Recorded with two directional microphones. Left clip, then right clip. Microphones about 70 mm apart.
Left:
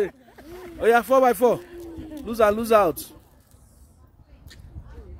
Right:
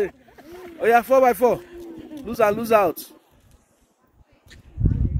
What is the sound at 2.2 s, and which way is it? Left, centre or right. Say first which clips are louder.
Speech: even; left.